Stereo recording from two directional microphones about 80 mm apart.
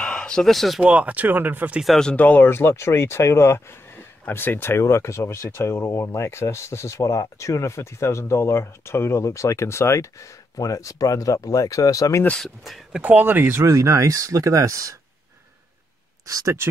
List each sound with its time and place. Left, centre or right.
0.0 s speech: centre
0.8 s speech: centre
2.1 s speech: left
13.0 s speech: right
16.3 s speech: right